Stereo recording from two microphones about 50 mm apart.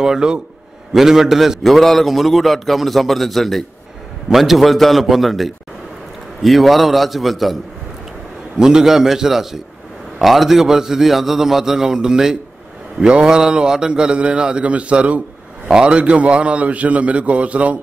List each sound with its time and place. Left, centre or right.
0.0 s a man's voice: centre
8.5 s a man's voice: centre; by 17.7 s right